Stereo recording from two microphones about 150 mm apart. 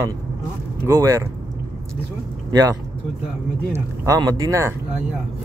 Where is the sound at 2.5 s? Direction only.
25° right (ahead or behind).